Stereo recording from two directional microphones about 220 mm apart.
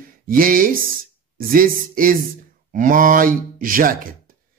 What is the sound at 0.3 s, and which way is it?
Speech, 40° right (ahead or behind).